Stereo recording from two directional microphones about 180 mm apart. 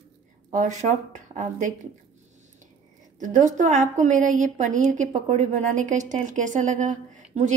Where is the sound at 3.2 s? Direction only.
45° right (ahead or behind).